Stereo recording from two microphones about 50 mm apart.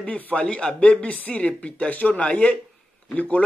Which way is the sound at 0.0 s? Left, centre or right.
Left.